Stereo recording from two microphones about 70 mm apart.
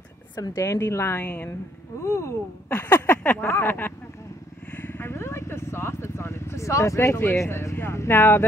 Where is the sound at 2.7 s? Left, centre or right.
Left.